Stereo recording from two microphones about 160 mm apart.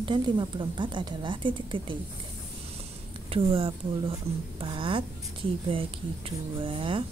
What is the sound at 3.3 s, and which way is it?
Speech, 35° right (ahead or behind).